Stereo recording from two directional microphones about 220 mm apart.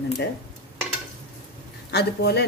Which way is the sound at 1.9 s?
50° left (ahead or behind).